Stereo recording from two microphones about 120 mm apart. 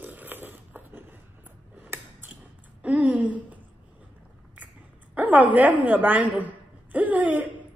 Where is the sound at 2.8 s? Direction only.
10° right (ahead or behind).